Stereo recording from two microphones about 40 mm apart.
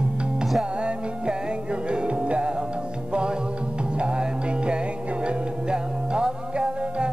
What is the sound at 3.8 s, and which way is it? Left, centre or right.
Music, right.